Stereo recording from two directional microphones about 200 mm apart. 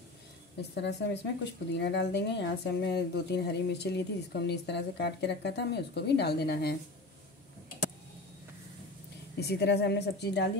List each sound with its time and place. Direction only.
0.6 s a woman's voice: 60° left (ahead or behind)
9.4 s a woman's voice: 55° left (ahead or behind)